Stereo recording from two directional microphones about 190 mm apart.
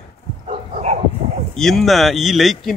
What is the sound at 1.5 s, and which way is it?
A man's voice, centre (ahead or behind).